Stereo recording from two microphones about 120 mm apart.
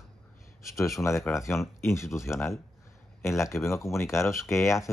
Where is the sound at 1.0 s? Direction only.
25° left (ahead or behind).